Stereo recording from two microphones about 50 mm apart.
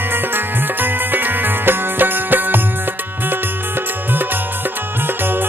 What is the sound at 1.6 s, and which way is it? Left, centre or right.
Music, right.